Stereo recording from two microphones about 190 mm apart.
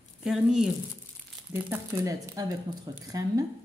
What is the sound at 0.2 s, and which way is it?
A woman's voice, 5° right (ahead or behind).